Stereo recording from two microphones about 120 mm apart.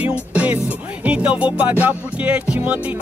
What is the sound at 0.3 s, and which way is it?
Music, 10° right (ahead or behind).